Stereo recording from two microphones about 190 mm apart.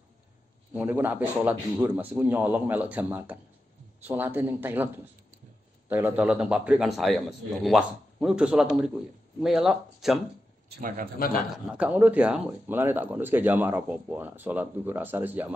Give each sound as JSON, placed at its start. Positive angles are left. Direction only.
{"t": 0.7, "sound": "a man's voice", "side_deg": -10}
{"t": 10.7, "sound": "a man's voice", "side_deg": -45}
{"t": 11.5, "sound": "speech", "side_deg": -5}